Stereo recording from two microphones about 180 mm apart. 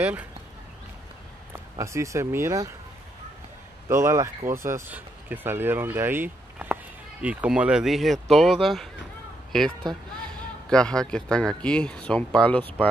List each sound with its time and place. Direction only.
0.0 s speech: 10° right (ahead or behind)
1.5 s speech: 15° right (ahead or behind)
3.9 s speech: 15° right (ahead or behind); by 8.8 s centre (ahead or behind)
9.8 s speech: 25° right (ahead or behind)
10.7 s speech: 5° left (ahead or behind)